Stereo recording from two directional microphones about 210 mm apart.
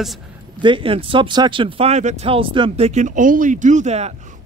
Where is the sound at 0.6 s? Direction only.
25° right (ahead or behind).